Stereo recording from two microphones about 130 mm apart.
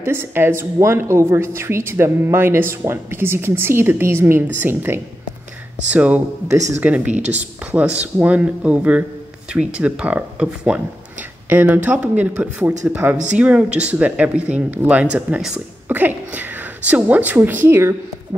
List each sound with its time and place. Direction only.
0.0 s a woman's voice: 20° right (ahead or behind)
7.1 s speech: 60° right (ahead or behind)
7.3 s speech: 10° right (ahead or behind)